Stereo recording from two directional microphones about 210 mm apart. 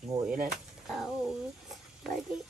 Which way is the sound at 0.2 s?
5° right (ahead or behind).